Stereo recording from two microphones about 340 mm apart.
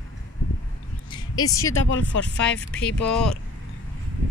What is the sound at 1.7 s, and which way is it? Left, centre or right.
Speech, left.